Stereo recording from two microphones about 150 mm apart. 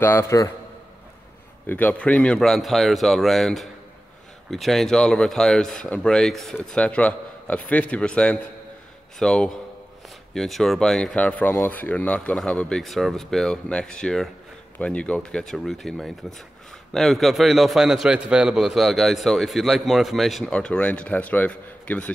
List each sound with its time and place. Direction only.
0.0 s a man's voice: 15° left (ahead or behind)
1.7 s a man's voice: 10° left (ahead or behind)